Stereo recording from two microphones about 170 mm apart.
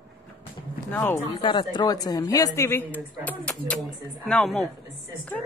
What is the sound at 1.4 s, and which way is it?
A man's voice, 25° left (ahead or behind).